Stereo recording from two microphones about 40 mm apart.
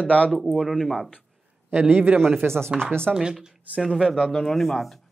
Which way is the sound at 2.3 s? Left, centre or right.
Right.